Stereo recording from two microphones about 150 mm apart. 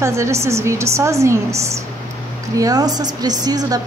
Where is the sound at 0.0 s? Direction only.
20° right (ahead or behind).